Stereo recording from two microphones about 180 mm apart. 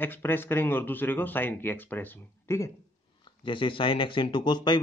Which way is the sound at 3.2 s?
25° left (ahead or behind).